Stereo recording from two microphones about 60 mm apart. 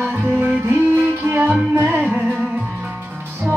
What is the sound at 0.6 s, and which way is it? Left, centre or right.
Music, right.